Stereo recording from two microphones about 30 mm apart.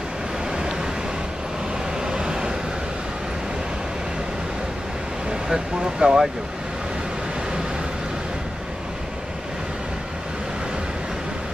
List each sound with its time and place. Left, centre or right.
0.5 s vehicle: right
2.0 s vehicle: right
5.5 s speech: right